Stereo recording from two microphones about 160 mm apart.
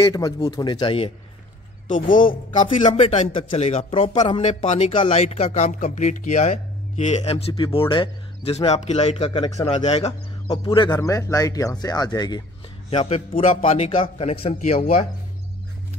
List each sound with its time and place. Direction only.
0.0 s a man's voice: 25° left (ahead or behind)
1.9 s speech: 55° left (ahead or behind)
2.9 s speech: 35° left (ahead or behind)
9.8 s a man's voice: 40° left (ahead or behind); by 12.4 s 25° left (ahead or behind)
12.9 s speech: 35° left (ahead or behind)